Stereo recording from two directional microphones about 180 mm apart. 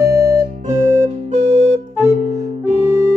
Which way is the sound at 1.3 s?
35° right (ahead or behind).